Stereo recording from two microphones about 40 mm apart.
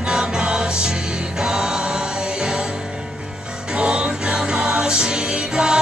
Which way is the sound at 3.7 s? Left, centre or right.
Right.